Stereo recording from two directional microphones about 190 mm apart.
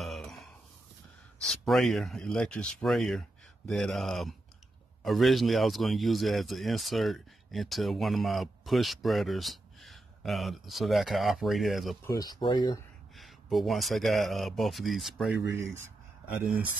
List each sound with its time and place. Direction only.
0.0 s a sound: centre (ahead or behind)
1.5 s speech: centre (ahead or behind)
12.1 s speech: 20° left (ahead or behind)
13.1 s speech: centre (ahead or behind)